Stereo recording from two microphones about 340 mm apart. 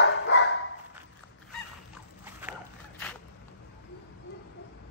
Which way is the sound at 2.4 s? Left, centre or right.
Centre.